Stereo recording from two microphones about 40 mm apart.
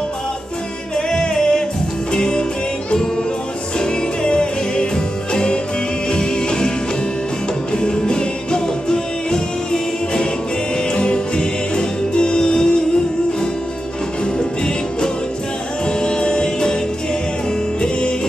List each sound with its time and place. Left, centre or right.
0.9 s music: centre
3.8 s music: left
7.7 s music: left
15.9 s music: centre